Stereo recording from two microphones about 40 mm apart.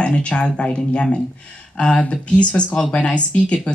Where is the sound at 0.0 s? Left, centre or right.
Left.